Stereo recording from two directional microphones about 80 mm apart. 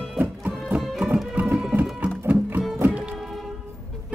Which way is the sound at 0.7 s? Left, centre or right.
Centre.